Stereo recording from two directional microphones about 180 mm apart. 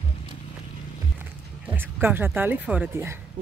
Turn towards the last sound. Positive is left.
turn(degrees=-10)  # may be behind; listen again after turning